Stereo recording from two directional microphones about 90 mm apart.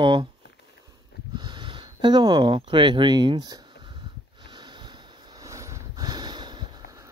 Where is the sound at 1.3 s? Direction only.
60° right (ahead or behind).